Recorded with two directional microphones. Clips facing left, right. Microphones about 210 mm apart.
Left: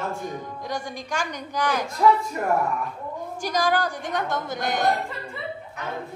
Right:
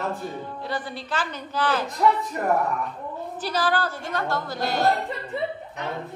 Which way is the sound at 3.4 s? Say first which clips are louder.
Left 1 dB; 10° left (ahead or behind).